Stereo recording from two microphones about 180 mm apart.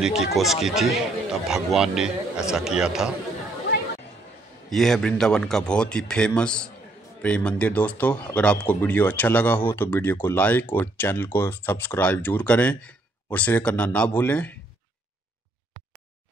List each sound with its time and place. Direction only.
0.0 s speech: 5° right (ahead or behind)
4.6 s speech: centre (ahead or behind)